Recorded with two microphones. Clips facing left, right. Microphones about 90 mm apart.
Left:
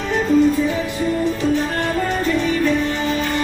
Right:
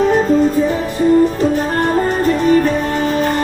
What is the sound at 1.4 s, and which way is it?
Music, 40° right (ahead or behind).